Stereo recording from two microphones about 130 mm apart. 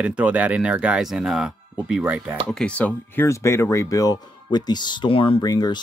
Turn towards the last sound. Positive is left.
turn(degrees=30)  # may be behind; listen again after turning